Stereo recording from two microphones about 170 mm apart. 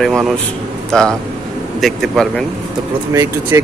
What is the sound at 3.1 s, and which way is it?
Speech, 20° right (ahead or behind).